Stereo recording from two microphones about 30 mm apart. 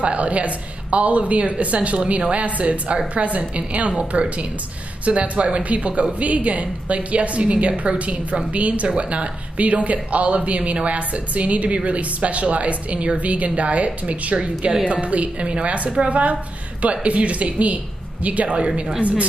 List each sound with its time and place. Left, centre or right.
0.0 s a woman's voice: right